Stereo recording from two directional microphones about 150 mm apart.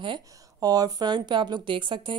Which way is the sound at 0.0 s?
30° right (ahead or behind).